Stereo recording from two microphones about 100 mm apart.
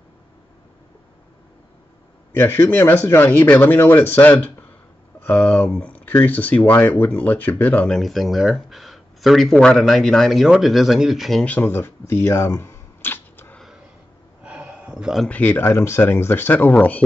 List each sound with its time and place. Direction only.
2.3 s speech: 25° left (ahead or behind)
8.0 s speech: centre (ahead or behind)
11.4 s camera: 15° left (ahead or behind)
14.4 s a sound: 10° right (ahead or behind)
15.2 s speech: 15° left (ahead or behind)